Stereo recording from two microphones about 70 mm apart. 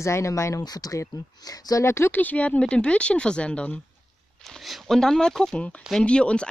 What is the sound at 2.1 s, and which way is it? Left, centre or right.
Speech, left.